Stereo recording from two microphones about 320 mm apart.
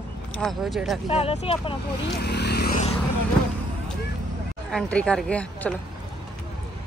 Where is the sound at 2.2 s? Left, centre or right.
Left.